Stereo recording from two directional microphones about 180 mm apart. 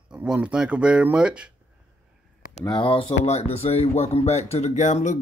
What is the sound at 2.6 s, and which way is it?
Speech, 25° left (ahead or behind).